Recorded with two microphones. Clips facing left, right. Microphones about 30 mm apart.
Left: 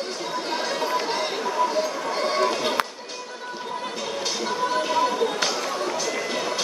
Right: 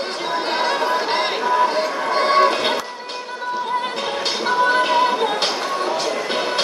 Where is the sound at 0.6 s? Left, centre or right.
Right.